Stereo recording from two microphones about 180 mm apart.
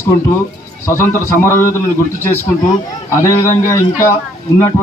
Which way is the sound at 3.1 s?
15° left (ahead or behind).